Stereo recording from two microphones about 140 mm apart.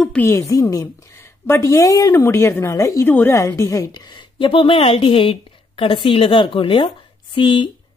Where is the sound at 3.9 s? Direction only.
30° left (ahead or behind).